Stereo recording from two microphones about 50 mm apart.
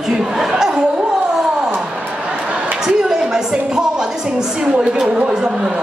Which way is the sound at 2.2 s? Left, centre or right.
Right.